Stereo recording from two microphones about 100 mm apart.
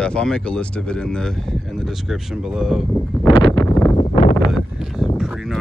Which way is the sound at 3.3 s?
55° left (ahead or behind).